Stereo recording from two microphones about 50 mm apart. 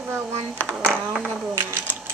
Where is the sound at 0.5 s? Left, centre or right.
Left.